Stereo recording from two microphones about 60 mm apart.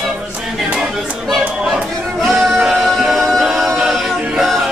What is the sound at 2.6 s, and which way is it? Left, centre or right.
A capella, centre.